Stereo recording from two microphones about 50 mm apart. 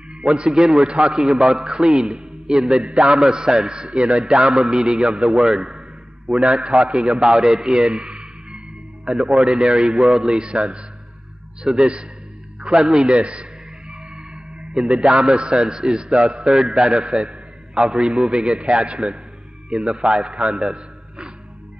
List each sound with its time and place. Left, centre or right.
0.1 s a man's voice: centre
12.7 s a man's voice: centre
13.1 s music: right
15.3 s a man's voice: centre